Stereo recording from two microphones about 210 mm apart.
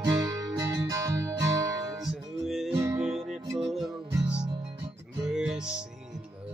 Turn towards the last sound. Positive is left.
turn(degrees=-5)  # may be behind; listen again after turning